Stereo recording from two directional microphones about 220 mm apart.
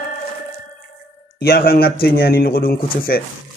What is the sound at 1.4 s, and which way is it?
Speech, 45° left (ahead or behind).